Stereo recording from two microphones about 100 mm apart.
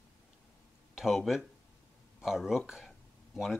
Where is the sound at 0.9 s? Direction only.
5° right (ahead or behind).